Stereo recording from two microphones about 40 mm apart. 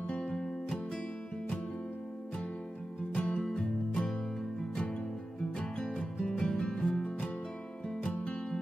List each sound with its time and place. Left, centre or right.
0.0 s music: left
0.3 s music: centre
3.2 s music: left
5.6 s music: left
5.9 s music: centre